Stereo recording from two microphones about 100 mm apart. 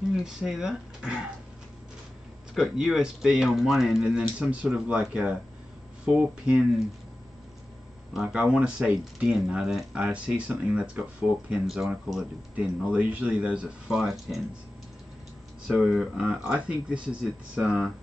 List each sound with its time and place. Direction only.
0.1 s speech: 5° right (ahead or behind)
2.5 s speech: 5° right (ahead or behind)
8.1 s speech: 5° right (ahead or behind)
15.7 s speech: centre (ahead or behind)